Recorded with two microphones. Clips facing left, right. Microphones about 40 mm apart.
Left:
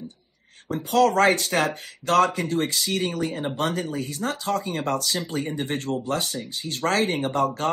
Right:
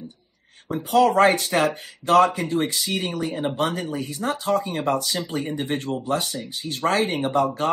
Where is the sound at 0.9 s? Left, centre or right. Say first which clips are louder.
Right 2 dB; right.